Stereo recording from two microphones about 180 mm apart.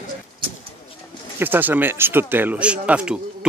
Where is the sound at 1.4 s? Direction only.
10° right (ahead or behind).